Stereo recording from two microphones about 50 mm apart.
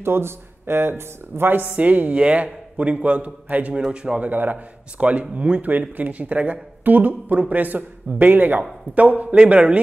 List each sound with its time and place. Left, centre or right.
0.0 s speech: right
1.7 s a man's voice: right
3.7 s a man's voice: centre
4.3 s speech: right
4.9 s a man's voice: right
5.7 s speech: right
9.3 s a man's voice: right